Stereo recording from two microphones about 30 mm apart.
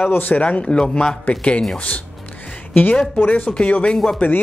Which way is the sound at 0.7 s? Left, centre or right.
Left.